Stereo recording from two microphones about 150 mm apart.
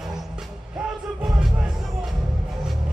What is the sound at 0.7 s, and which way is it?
Music, centre (ahead or behind).